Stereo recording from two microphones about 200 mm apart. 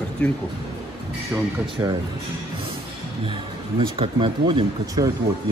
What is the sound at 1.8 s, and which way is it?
Speech, 10° right (ahead or behind).